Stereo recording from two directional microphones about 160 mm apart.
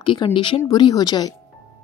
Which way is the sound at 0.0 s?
30° left (ahead or behind).